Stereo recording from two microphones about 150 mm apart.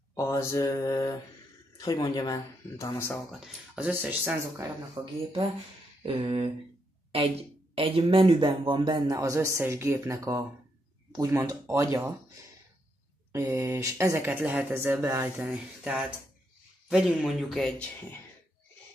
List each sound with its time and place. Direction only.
0.1 s speech: 20° left (ahead or behind)
3.3 s speech: 5° right (ahead or behind); by 5.1 s 20° right (ahead or behind)
6.0 s speech: 40° right (ahead or behind); by 12.1 s 20° right (ahead or behind)
13.3 s a man's voice: 20° right (ahead or behind); by 17.8 s 5° left (ahead or behind)